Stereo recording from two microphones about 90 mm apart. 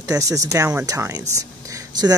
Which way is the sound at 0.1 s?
40° right (ahead or behind).